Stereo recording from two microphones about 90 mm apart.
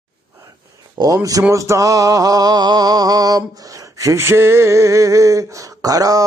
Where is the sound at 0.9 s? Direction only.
45° right (ahead or behind).